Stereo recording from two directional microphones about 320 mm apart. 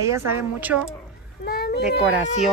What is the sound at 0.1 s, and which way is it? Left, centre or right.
Speech, centre.